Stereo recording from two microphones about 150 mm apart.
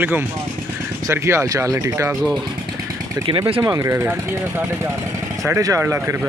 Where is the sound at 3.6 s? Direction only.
20° right (ahead or behind).